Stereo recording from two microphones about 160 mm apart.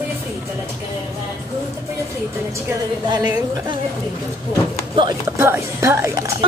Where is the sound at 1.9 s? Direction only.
15° right (ahead or behind).